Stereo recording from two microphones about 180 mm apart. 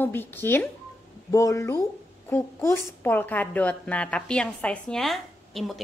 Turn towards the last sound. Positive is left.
turn(degrees=0)  # may be behind; listen again after turning